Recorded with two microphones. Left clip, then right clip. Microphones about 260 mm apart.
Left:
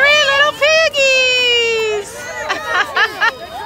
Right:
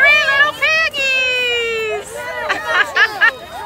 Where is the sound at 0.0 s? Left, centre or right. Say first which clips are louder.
Even; centre.